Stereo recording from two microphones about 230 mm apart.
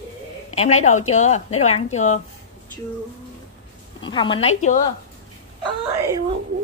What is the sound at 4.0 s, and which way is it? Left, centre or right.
Speech, left.